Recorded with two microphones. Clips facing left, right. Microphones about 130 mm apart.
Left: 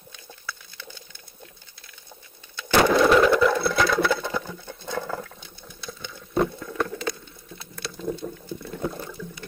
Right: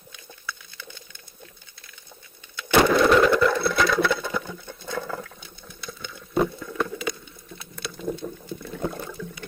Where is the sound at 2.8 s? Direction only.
Centre (ahead or behind).